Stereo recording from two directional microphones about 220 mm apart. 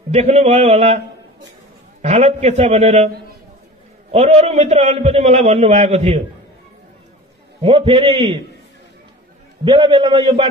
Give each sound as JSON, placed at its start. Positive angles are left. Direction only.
{"t": 0.1, "sound": "a man's voice", "side_deg": -30}
{"t": 4.1, "sound": "a man's voice", "side_deg": -30}
{"t": 7.6, "sound": "a man's voice", "side_deg": -25}
{"t": 9.7, "sound": "a man's voice", "side_deg": -20}